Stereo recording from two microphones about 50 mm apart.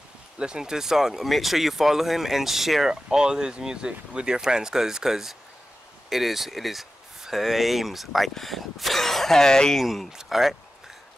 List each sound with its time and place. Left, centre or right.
0.4 s speech: centre
2.9 s speech: centre